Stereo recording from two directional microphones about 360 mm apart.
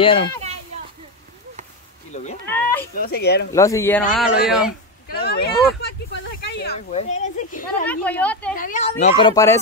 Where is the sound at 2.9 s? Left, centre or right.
Left.